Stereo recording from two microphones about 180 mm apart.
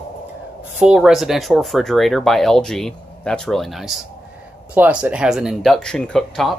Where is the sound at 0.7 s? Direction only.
5° right (ahead or behind).